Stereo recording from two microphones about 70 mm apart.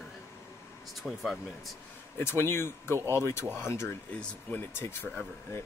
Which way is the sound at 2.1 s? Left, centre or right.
Left.